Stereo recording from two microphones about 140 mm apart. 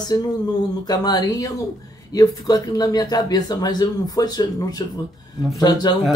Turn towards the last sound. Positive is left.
turn(degrees=30)  # may be behind; listen again after turning